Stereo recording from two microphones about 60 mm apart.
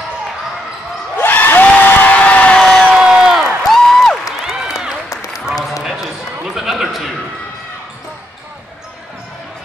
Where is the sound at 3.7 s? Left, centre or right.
Centre.